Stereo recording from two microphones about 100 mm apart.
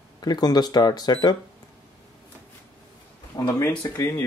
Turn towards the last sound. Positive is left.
turn(degrees=40)  # may be behind; listen again after turning